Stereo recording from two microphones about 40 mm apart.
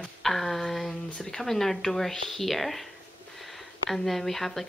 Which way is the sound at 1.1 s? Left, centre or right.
Centre.